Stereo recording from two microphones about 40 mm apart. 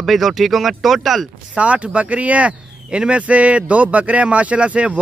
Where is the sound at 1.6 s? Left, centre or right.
Right.